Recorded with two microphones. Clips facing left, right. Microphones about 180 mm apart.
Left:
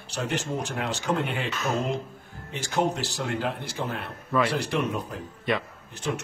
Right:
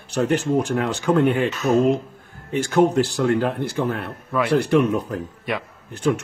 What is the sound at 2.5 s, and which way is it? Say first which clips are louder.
A man's voice: right 9 dB; 55° right (ahead or behind).